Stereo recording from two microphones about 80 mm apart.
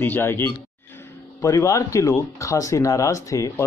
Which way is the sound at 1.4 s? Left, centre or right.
Left.